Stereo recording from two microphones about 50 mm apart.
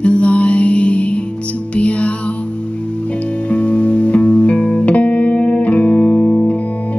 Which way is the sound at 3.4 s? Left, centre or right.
Left.